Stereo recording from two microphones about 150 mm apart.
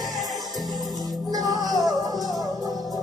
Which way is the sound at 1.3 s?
25° right (ahead or behind).